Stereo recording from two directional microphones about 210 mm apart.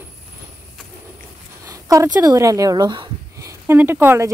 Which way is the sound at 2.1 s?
15° right (ahead or behind).